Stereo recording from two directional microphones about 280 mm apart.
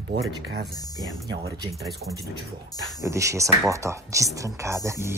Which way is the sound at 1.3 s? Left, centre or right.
Centre.